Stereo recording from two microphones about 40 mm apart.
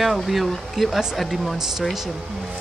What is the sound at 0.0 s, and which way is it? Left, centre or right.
Speech, centre.